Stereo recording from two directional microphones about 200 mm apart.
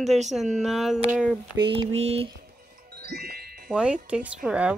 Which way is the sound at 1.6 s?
25° right (ahead or behind).